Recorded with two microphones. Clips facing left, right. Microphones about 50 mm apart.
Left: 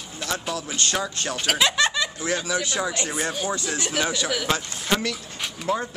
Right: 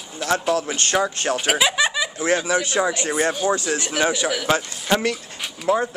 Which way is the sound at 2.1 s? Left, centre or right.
Right.